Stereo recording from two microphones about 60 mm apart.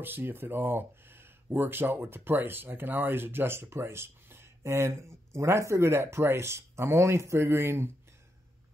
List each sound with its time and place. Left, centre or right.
0.0 s speech: right